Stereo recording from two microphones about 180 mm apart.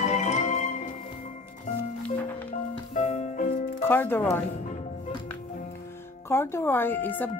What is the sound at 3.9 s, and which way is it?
Speech, 10° left (ahead or behind).